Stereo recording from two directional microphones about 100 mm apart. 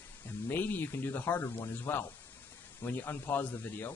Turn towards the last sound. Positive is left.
turn(degrees=20)  # may be behind; listen again after turning